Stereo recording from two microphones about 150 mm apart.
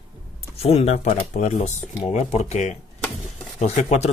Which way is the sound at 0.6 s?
40° left (ahead or behind).